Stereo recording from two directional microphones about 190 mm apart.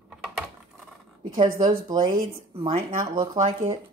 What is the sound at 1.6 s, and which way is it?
Speech, 20° right (ahead or behind).